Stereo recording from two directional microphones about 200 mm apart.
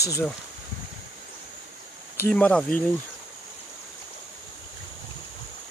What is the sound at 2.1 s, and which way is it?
Speech, 10° left (ahead or behind).